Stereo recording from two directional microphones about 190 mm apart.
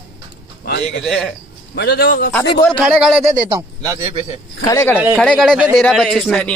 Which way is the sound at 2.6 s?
5° right (ahead or behind).